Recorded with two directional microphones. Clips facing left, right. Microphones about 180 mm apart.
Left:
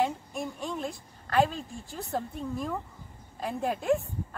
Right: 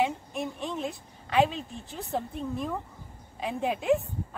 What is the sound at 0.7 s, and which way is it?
A woman's voice, 5° right (ahead or behind).